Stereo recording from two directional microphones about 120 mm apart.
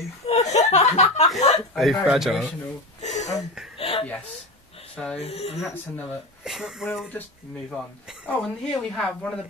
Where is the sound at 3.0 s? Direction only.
80° left.